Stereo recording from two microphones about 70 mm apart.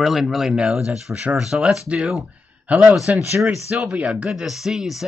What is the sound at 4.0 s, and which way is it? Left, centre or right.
Speech, centre.